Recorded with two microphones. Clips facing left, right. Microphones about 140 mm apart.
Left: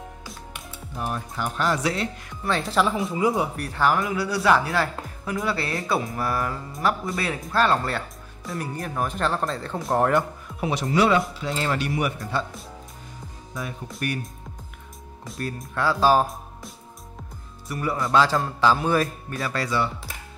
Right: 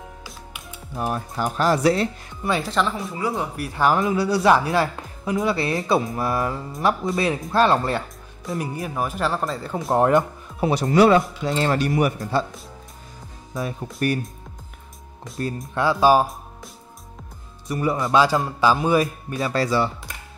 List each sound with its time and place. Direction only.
0.9 s speech: 40° right (ahead or behind)
2.6 s speech: centre (ahead or behind)
3.1 s speech: 20° left (ahead or behind)
3.5 s a man's voice: 10° right (ahead or behind)
3.8 s speech: 25° right (ahead or behind)
8.5 s speech: 10° right (ahead or behind)
9.8 s speech: 20° right (ahead or behind)
10.6 s speech: 40° right (ahead or behind)
13.9 s speech: 35° right (ahead or behind)
15.7 s a man's voice: 20° right (ahead or behind)
17.6 s a man's voice: 20° right (ahead or behind)